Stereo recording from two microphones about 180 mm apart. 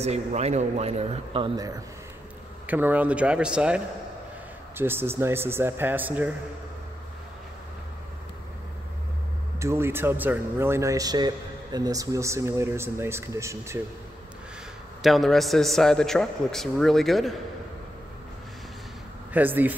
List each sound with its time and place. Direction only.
0.0 s a man's voice: 35° right (ahead or behind)
2.6 s speech: 10° right (ahead or behind)
9.6 s speech: 15° right (ahead or behind)
15.0 s a man's voice: centre (ahead or behind)
19.3 s speech: 10° right (ahead or behind)